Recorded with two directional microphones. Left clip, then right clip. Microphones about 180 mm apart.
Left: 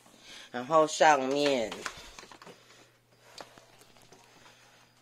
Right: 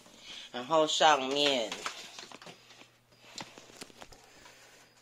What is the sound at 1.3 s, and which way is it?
Speech, 55° left (ahead or behind).